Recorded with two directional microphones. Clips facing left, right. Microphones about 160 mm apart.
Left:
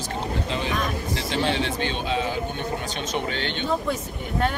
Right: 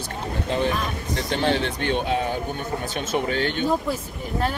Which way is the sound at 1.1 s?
50° right (ahead or behind).